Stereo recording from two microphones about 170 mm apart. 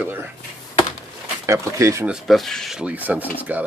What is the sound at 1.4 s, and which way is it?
Speech, 15° right (ahead or behind).